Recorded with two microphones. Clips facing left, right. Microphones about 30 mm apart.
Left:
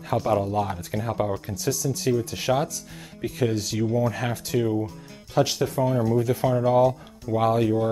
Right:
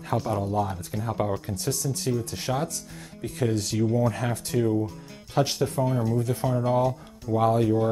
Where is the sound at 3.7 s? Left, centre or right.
Centre.